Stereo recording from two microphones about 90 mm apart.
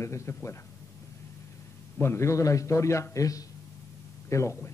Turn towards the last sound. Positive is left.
turn(degrees=30)  # may be behind; listen again after turning